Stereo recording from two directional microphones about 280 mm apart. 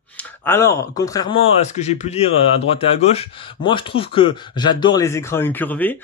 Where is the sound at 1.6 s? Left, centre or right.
Left.